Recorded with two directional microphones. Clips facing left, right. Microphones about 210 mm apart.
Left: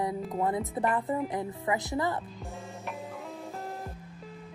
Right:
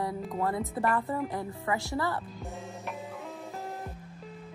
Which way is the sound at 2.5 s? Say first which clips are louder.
Left 1 dB; centre (ahead or behind).